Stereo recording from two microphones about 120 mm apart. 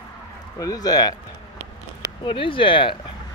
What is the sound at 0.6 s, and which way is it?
Speech, 30° left (ahead or behind).